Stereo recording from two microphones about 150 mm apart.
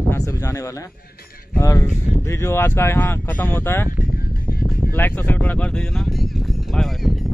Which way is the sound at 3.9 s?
80° left.